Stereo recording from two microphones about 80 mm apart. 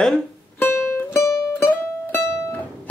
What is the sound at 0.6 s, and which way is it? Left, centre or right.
Music, left.